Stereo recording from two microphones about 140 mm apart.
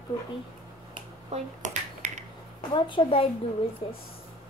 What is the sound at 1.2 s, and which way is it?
Finger snapping, 55° right (ahead or behind).